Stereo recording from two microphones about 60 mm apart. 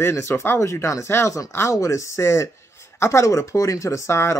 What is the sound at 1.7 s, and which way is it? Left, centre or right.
Speech, left.